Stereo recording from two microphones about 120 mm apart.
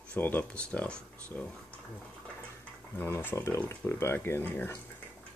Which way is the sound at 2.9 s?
20° left (ahead or behind).